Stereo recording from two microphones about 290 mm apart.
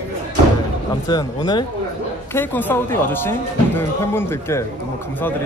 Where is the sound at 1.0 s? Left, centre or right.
Centre.